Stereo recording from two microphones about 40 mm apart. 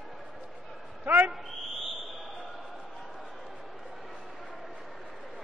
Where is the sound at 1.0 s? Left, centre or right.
Right.